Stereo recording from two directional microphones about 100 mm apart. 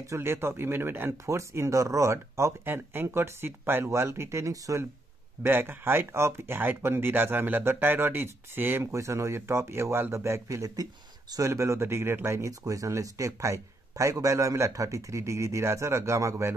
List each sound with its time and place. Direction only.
0.0 s speech: 30° right (ahead or behind)